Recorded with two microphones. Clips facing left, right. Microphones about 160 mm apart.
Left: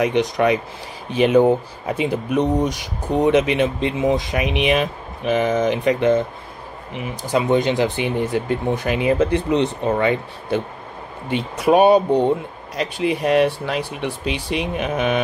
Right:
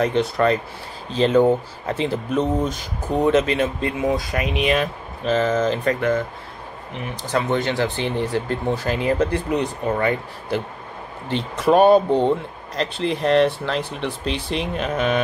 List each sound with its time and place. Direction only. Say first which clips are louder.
0.0 s speech: left 1 dB; 15° left (ahead or behind)
6.9 s speech: left 3 dB; 10° left (ahead or behind)